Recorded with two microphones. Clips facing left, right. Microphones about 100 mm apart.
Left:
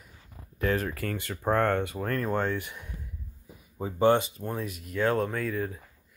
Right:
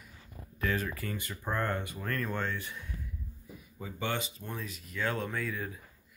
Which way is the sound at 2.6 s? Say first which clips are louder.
Even; 15° left (ahead or behind).